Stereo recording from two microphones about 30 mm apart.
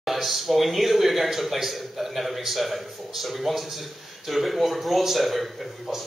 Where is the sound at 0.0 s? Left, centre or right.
Centre.